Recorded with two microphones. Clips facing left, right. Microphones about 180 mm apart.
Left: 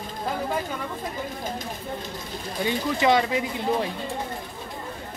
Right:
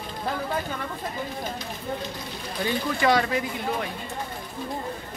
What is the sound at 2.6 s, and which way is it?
Speech, 20° left (ahead or behind).